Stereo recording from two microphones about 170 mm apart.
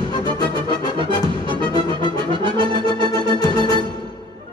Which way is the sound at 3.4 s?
25° left (ahead or behind).